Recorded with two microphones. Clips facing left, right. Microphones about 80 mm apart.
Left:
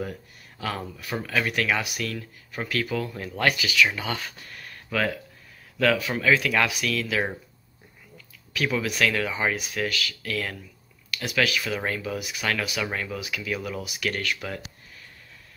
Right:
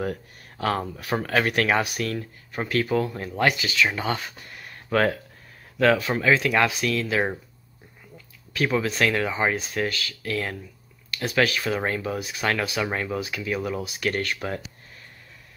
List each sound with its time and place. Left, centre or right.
0.0 s speech: right
4.8 s speech: right
8.6 s speech: right